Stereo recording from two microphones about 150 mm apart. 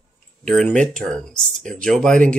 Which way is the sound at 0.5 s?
5° left (ahead or behind).